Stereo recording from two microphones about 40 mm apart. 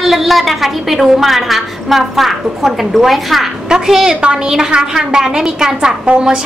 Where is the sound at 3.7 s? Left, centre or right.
Centre.